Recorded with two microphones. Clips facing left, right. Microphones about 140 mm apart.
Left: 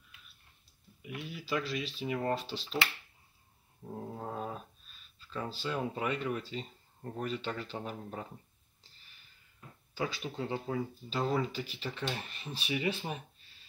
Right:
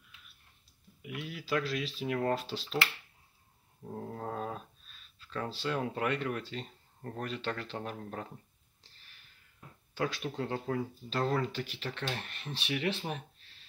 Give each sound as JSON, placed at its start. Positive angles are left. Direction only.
{"t": 1.0, "sound": "speech", "side_deg": 0}
{"t": 9.9, "sound": "speech", "side_deg": 5}